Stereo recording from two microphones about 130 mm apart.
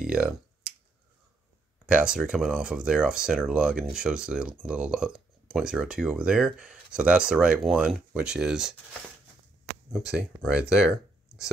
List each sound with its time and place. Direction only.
0.0 s finger snapping: 10° right (ahead or behind)
1.9 s speech: 10° right (ahead or behind)
9.9 s speech: 5° right (ahead or behind)